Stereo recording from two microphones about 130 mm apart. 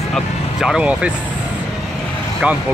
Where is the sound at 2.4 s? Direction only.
5° right (ahead or behind).